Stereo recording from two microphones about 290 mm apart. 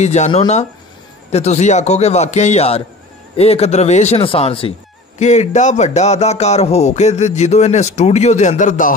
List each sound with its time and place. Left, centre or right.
0.0 s speech: left